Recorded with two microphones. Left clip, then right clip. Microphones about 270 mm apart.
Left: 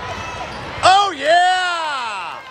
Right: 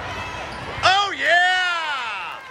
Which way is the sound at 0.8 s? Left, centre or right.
Centre.